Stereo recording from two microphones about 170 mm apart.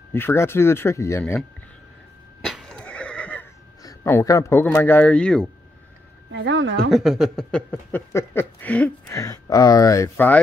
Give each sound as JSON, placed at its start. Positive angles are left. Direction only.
{"t": 0.1, "sound": "speech", "side_deg": 15}
{"t": 2.4, "sound": "neigh", "side_deg": 0}
{"t": 3.8, "sound": "speech", "side_deg": 15}
{"t": 6.3, "sound": "speech", "side_deg": -90}
{"t": 6.9, "sound": "speech", "side_deg": 0}
{"t": 9.1, "sound": "speech", "side_deg": 20}